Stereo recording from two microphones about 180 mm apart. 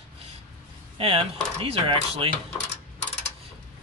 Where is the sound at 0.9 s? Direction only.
35° right (ahead or behind).